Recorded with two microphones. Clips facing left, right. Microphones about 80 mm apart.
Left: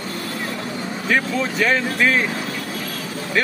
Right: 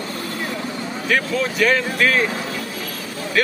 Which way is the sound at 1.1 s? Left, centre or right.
Left.